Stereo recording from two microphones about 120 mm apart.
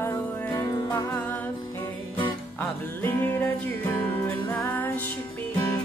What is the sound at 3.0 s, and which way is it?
Music, 15° left (ahead or behind).